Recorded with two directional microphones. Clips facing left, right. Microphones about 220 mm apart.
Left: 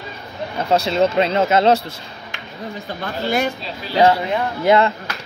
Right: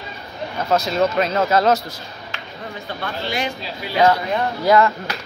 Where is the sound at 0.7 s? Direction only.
30° left (ahead or behind).